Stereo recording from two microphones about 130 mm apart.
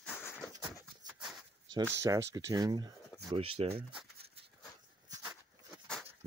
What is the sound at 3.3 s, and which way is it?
Speech, 50° right (ahead or behind).